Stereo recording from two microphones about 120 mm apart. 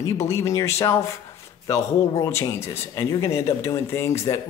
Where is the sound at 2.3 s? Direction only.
25° left (ahead or behind).